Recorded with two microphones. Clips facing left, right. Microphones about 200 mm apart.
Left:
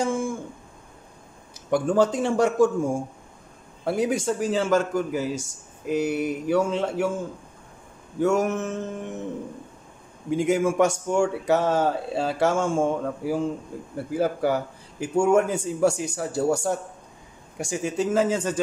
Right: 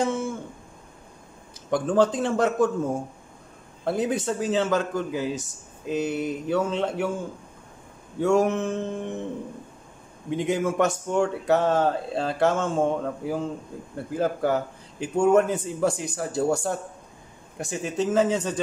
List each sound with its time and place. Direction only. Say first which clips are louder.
0.0 s a sound: left 1 dB; 10° left (ahead or behind)
1.7 s speech: left 1 dB; 10° left (ahead or behind)
8.2 s speech: right 1 dB; 5° left (ahead or behind)
10.3 s speech: left 3 dB; 10° left (ahead or behind)